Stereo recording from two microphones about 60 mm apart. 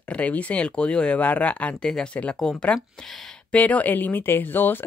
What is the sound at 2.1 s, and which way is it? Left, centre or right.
Speech, left.